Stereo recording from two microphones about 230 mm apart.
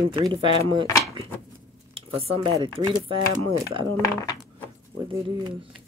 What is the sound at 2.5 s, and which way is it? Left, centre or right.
Speech, right.